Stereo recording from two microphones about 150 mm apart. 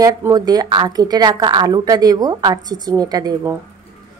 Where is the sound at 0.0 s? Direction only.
25° right (ahead or behind).